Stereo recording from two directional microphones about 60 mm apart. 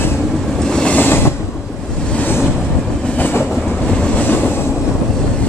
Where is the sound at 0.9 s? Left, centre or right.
Left.